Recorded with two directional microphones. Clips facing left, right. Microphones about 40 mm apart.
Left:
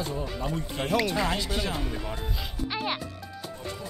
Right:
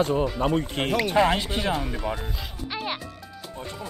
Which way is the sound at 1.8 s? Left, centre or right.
Centre.